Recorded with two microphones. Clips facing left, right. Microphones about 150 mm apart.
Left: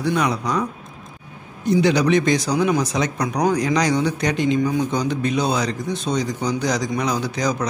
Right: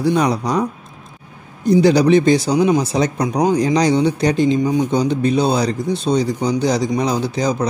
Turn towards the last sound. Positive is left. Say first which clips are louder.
# right 4 dB
turn(degrees=-30)  # may be behind; listen again after turning